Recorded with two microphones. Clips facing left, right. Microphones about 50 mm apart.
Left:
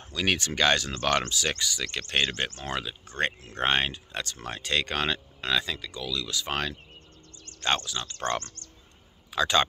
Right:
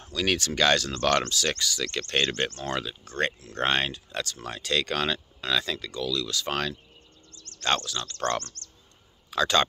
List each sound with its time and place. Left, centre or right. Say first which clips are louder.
0.0 s speech: right 1 dB; centre
3.1 s speech: even; left